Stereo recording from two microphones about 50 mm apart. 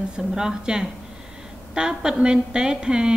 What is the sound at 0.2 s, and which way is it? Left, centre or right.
A woman's voice, centre.